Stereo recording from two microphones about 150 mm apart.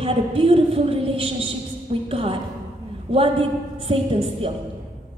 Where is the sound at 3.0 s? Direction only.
40° right (ahead or behind).